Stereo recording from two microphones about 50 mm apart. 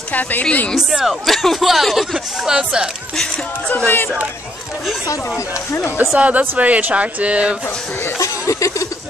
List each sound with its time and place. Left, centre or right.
0.1 s a woman's voice: left
0.7 s speech: centre
1.2 s speech: centre
5.9 s speech: right
8.0 s chuckle: left